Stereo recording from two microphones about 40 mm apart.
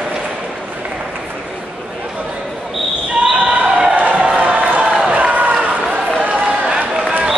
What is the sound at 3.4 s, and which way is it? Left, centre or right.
Basketball bounce, right.